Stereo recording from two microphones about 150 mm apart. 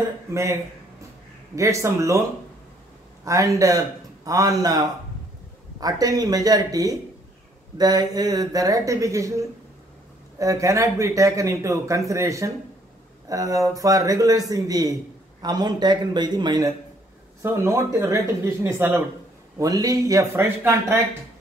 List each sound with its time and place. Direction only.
0.3 s speech: 20° right (ahead or behind)
3.3 s speech: 20° right (ahead or behind)
5.8 s speech: 25° right (ahead or behind)